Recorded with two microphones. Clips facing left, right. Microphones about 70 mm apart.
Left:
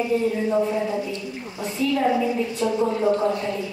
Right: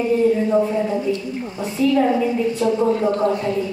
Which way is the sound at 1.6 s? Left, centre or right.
Right.